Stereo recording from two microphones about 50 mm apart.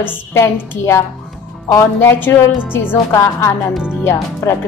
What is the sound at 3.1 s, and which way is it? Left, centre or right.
Speech, left.